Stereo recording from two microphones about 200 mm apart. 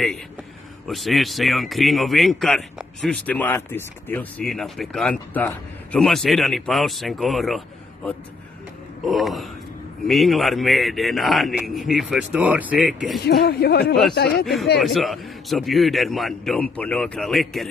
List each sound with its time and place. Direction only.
0.8 s a man's voice: centre (ahead or behind)
13.2 s speech: 50° left (ahead or behind)
14.4 s a man's voice: centre (ahead or behind)